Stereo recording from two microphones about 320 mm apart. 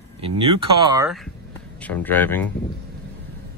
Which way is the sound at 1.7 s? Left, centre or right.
Centre.